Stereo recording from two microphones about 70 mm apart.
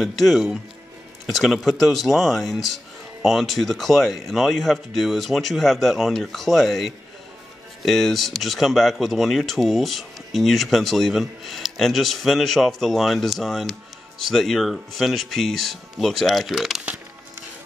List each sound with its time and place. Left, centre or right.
0.0 s speech: centre